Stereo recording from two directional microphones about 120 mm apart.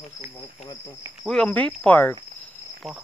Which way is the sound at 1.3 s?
10° left (ahead or behind).